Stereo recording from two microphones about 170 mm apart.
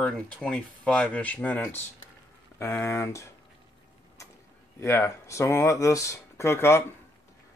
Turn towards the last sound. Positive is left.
turn(degrees=15)  # may be behind; listen again after turning